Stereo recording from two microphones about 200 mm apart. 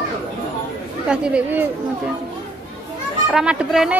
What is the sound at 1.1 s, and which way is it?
Speech, 5° right (ahead or behind).